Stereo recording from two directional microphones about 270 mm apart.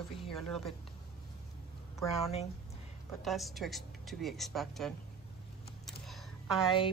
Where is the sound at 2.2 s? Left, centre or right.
Left.